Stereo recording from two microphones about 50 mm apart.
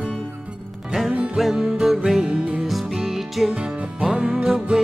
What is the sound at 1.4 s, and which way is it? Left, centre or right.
Music, centre.